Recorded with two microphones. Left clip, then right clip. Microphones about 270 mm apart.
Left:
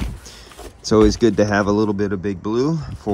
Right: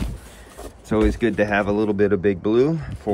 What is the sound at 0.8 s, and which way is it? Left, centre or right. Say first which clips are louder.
Speech: left 6 dB; centre.